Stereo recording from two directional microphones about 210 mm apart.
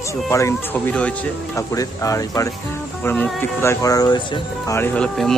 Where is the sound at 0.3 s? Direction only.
15° left (ahead or behind).